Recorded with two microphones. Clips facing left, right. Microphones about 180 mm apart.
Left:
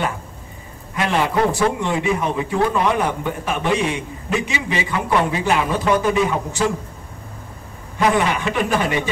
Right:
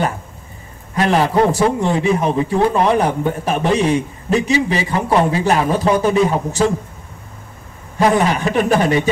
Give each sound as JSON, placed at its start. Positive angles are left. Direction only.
{"t": 0.9, "sound": "a man's voice", "side_deg": -40}
{"t": 8.0, "sound": "a man's voice", "side_deg": -40}